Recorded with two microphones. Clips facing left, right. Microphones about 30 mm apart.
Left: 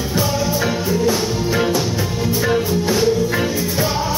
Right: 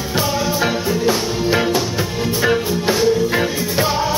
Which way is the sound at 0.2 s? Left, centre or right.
Centre.